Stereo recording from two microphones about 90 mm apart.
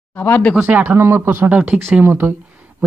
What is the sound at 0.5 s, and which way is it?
Speech, 15° right (ahead or behind).